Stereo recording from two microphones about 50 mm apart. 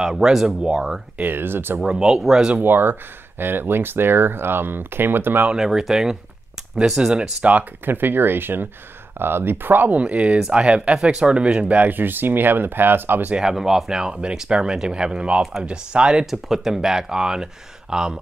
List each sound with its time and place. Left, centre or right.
0.0 s speech: centre
1.1 s speech: right
1.9 s speech: centre
2.6 s speech: right
5.6 s speech: centre
7.8 s speech: right
13.4 s speech: centre
16.3 s speech: centre